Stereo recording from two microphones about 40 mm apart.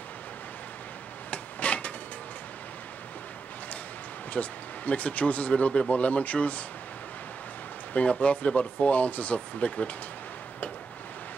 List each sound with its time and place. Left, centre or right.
1.3 s a sound: left
4.3 s speech: left
7.9 s speech: left